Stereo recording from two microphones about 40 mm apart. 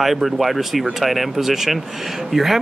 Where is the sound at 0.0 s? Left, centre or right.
Centre.